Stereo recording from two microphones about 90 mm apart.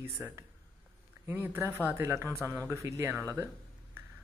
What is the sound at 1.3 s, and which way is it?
Speech, 25° right (ahead or behind).